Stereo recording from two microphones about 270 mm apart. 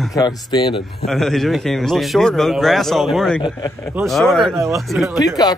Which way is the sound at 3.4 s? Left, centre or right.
Centre.